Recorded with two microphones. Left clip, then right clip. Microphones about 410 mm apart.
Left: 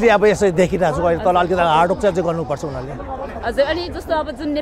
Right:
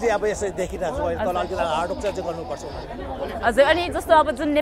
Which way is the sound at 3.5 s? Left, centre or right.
Right.